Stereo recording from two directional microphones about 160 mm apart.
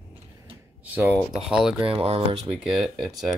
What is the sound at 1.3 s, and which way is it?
Speech, 5° right (ahead or behind).